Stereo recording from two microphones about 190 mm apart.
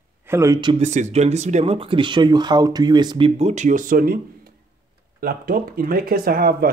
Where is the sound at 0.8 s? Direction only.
35° right (ahead or behind).